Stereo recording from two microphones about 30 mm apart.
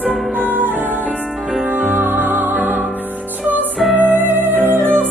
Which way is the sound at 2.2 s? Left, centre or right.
Right.